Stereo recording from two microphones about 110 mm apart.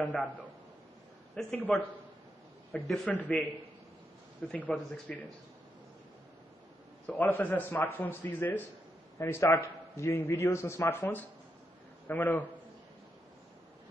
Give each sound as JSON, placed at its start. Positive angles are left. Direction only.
{"t": 0.0, "sound": "a man's voice", "side_deg": 5}
{"t": 1.3, "sound": "a man's voice", "side_deg": 10}
{"t": 4.5, "sound": "a man's voice", "side_deg": 10}
{"t": 7.1, "sound": "a man's voice", "side_deg": 15}